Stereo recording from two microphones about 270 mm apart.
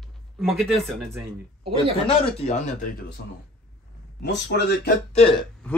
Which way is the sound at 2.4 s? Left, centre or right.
Left.